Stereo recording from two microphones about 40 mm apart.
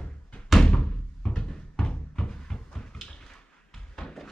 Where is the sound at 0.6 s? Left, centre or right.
Left.